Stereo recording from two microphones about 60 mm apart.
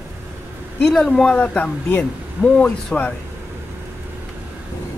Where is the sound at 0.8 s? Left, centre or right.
Centre.